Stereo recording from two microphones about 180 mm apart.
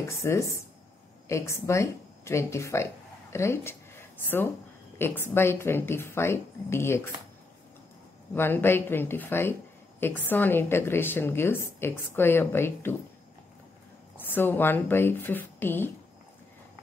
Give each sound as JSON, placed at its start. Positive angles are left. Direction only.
{"t": 0.1, "sound": "speech", "side_deg": 15}
{"t": 4.9, "sound": "speech", "side_deg": 10}
{"t": 8.4, "sound": "speech", "side_deg": 10}
{"t": 14.1, "sound": "speech", "side_deg": 10}